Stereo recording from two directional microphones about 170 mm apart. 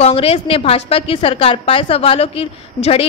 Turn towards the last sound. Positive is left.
turn(degrees=35)  # may be behind; listen again after turning